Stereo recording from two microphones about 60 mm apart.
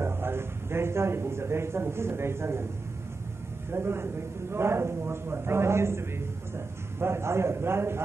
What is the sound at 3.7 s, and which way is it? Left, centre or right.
A man's voice, right.